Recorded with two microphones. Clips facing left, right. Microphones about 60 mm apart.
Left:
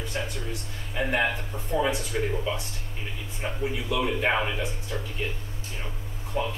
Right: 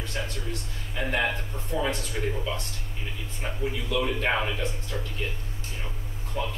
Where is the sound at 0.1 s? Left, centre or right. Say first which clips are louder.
Even; centre.